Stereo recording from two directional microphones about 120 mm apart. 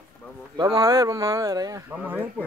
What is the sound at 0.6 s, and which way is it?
Speech, 45° right (ahead or behind).